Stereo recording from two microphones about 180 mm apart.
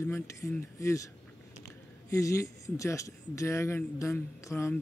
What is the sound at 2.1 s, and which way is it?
A man's voice, 15° left (ahead or behind).